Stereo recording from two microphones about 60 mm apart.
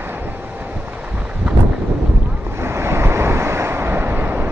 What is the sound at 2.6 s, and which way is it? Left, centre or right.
Waves, right.